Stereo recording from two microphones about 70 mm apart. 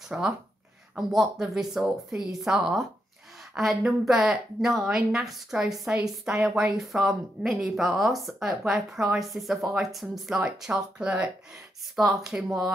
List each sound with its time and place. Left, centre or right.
0.1 s a woman's voice: centre
0.9 s a woman's voice: centre
10.6 s a woman's voice: centre
11.9 s a woman's voice: centre